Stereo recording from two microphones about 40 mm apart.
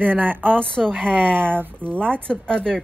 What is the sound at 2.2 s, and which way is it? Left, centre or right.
Speech, left.